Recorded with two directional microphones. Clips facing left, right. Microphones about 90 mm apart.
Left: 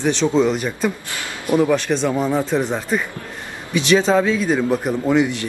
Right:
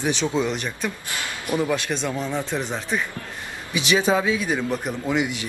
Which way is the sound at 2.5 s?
Centre (ahead or behind).